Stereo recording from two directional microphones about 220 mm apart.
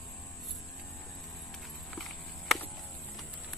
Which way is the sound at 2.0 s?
Centre (ahead or behind).